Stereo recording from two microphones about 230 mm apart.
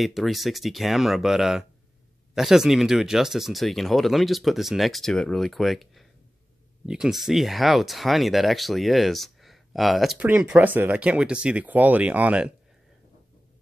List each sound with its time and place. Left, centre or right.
0.0 s speech: centre